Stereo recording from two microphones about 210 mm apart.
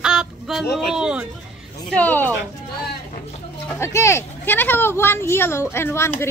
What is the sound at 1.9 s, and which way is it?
Speech, 10° left (ahead or behind).